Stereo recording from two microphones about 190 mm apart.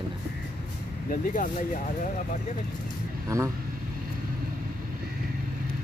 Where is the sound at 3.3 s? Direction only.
15° right (ahead or behind).